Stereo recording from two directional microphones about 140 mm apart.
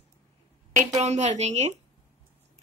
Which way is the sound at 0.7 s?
50° right (ahead or behind).